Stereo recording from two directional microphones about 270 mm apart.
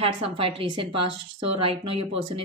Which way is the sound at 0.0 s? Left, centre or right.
Right.